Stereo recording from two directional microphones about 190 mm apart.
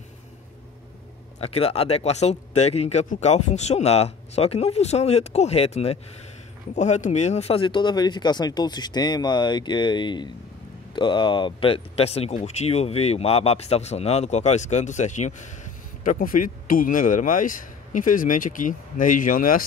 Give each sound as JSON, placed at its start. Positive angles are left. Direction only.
{"t": 1.4, "sound": "speech", "side_deg": 30}